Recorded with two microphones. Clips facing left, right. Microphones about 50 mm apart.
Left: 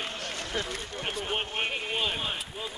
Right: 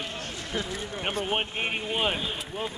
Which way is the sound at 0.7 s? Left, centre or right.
Right.